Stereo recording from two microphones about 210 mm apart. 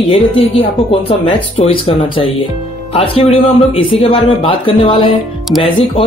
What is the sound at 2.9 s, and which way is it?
A woman's voice, 25° left (ahead or behind).